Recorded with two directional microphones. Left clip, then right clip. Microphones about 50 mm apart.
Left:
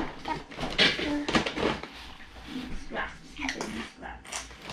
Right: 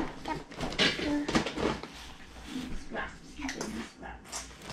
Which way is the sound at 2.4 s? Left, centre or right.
Right.